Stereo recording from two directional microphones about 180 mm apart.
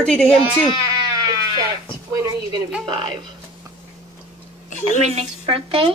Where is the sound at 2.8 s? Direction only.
25° right (ahead or behind).